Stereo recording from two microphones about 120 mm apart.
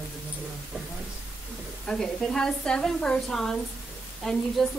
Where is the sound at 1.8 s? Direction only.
5° left (ahead or behind).